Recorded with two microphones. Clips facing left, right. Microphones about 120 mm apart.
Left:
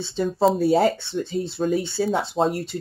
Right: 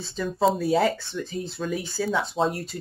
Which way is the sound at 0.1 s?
35° left (ahead or behind).